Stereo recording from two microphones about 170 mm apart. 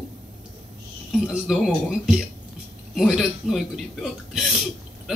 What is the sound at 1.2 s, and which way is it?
Speech, centre (ahead or behind).